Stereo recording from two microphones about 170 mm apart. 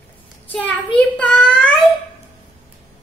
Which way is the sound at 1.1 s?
5° left (ahead or behind).